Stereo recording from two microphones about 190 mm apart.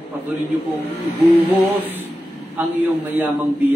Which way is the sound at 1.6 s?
10° right (ahead or behind).